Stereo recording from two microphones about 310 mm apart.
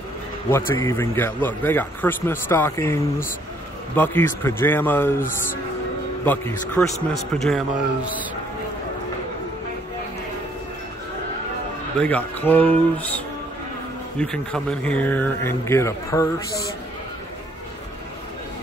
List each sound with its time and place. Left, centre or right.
0.5 s a man's voice: centre
5.2 s speech: left
6.2 s a man's voice: centre
12.0 s a man's voice: centre
14.2 s a man's voice: centre